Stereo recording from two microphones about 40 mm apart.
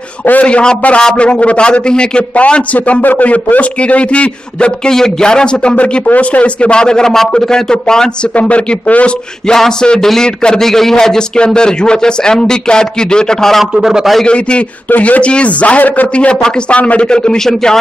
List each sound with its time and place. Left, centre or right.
0.3 s a man's voice: left
3.0 s a man's voice: left
6.0 s a man's voice: left; by 8.1 s centre
8.4 s a man's voice: left
9.5 s a man's voice: centre
13.7 s a man's voice: centre
14.2 s a man's voice: left
15.0 s a man's voice: left
16.4 s a man's voice: left